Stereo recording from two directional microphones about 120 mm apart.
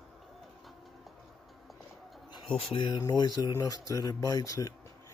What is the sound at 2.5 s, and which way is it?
Speech, 45° left (ahead or behind).